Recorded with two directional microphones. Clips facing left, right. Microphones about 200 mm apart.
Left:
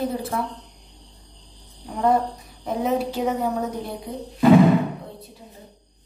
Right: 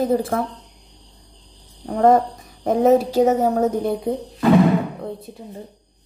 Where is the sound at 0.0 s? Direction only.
50° right (ahead or behind).